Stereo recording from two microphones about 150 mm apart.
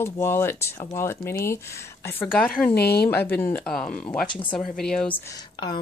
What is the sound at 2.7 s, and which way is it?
Speech, 90° left.